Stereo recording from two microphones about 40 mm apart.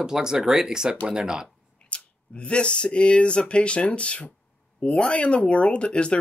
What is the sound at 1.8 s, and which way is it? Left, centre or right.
Speech, left.